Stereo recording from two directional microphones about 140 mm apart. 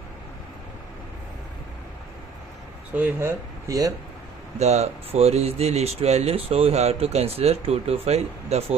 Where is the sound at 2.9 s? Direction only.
15° right (ahead or behind).